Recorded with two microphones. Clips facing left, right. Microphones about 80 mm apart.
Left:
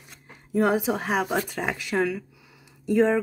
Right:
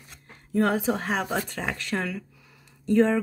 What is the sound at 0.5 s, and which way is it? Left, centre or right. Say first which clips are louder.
Speech: left 1 dB; centre.